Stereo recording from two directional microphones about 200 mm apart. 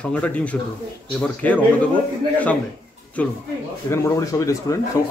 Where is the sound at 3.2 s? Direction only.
10° left (ahead or behind).